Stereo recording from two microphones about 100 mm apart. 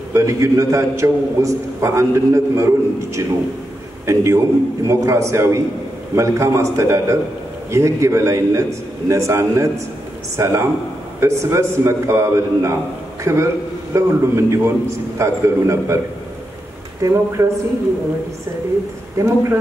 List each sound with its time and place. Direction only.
0.1 s a man's voice: 30° right (ahead or behind)
17.0 s a man's voice: 30° right (ahead or behind)
19.1 s a man's voice: 25° right (ahead or behind)